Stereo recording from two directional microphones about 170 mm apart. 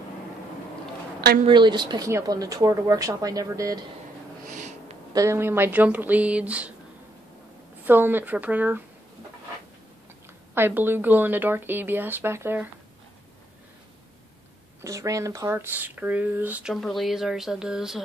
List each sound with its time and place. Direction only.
1.5 s speech: 25° right (ahead or behind)
4.5 s snort: 45° right (ahead or behind)
5.1 s speech: 15° right (ahead or behind)
7.8 s speech: 10° right (ahead or behind)
10.5 s speech: 10° right (ahead or behind)
14.8 s speech: 20° right (ahead or behind); by 18.0 s 5° right (ahead or behind)